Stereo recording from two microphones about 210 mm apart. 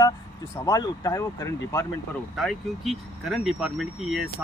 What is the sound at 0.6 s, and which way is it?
Speech, 15° left (ahead or behind).